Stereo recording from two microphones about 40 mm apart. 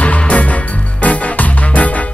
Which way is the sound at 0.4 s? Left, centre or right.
Left.